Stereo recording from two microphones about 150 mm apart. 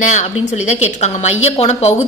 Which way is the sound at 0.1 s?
50° left (ahead or behind).